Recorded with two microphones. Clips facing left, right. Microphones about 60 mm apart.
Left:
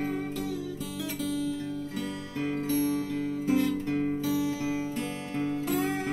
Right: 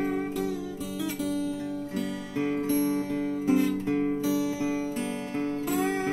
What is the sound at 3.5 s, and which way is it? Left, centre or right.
Guitar, centre.